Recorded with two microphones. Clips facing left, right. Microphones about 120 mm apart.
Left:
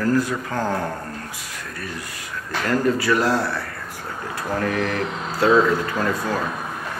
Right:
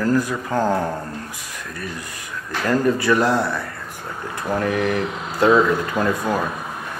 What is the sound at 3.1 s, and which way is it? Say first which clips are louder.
Speech: right 3 dB; 20° right (ahead or behind).